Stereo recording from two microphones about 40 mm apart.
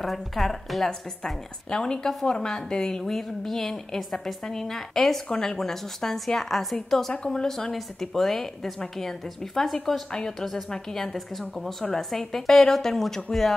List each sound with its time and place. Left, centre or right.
0.0 s a woman's voice: centre